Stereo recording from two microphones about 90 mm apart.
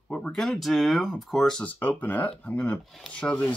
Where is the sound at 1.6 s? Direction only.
20° left (ahead or behind).